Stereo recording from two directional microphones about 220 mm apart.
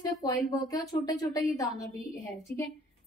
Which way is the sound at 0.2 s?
15° left (ahead or behind).